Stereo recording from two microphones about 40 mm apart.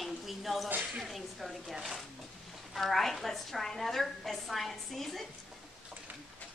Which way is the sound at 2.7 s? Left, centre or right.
Centre.